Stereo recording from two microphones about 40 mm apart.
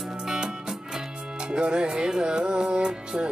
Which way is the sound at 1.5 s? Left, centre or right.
Right.